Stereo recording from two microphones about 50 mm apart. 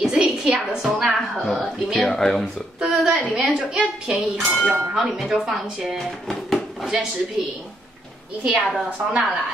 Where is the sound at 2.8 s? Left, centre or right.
Centre.